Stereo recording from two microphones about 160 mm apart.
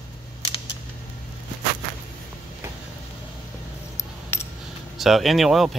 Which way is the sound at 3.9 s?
20° left (ahead or behind).